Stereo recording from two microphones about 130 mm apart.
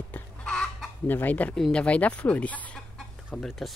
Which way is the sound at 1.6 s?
10° left (ahead or behind).